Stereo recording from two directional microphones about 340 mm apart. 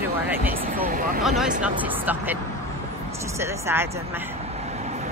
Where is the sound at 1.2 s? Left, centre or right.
Centre.